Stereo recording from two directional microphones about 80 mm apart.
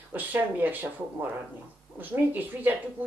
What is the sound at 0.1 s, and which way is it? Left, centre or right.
A woman's voice, right.